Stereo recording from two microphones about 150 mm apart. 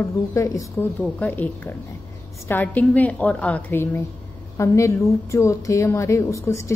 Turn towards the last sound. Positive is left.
turn(degrees=20)  # may be behind; listen again after turning